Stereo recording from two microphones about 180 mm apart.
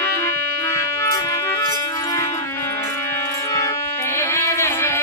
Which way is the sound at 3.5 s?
15° left (ahead or behind).